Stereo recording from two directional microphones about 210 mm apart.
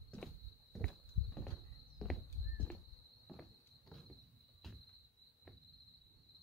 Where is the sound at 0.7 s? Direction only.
Centre (ahead or behind).